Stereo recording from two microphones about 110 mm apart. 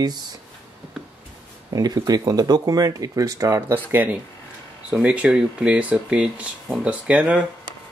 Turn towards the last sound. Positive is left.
turn(degrees=-10)  # may be behind; listen again after turning